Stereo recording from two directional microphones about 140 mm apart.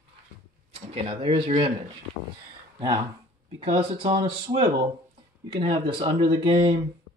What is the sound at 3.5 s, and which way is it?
Speech, 40° right (ahead or behind).